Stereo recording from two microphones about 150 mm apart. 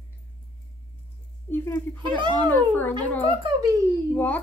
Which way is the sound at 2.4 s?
15° left (ahead or behind).